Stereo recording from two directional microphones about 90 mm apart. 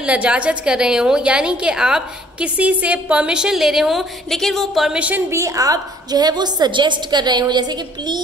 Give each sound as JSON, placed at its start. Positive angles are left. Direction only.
{"t": 0.0, "sound": "a woman's voice", "side_deg": -15}
{"t": 4.9, "sound": "a woman's voice", "side_deg": -15}
{"t": 5.3, "sound": "a woman's voice", "side_deg": -35}